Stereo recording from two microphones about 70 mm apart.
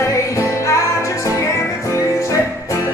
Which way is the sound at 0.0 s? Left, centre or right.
Left.